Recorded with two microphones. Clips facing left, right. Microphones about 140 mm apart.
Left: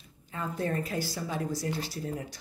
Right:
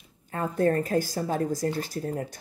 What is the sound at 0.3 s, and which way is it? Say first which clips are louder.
A woman's voice: right 8 dB; 50° right (ahead or behind).